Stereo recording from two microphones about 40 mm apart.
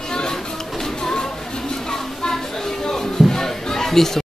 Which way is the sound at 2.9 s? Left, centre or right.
Centre.